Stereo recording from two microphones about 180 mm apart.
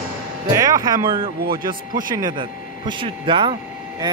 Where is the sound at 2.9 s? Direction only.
25° right (ahead or behind).